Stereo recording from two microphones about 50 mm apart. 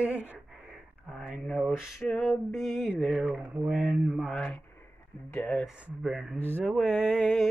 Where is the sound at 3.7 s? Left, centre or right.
Centre.